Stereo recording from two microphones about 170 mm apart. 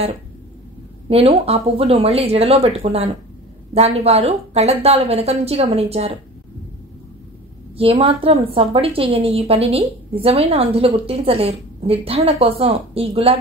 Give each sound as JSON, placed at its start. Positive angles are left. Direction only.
{"t": 1.0, "sound": "a woman's voice", "side_deg": -35}
{"t": 7.7, "sound": "a woman's voice", "side_deg": -35}